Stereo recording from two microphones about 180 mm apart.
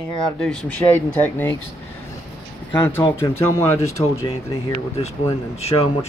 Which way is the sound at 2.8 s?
15° left (ahead or behind).